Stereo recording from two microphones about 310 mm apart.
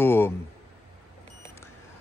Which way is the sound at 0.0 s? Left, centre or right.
Centre.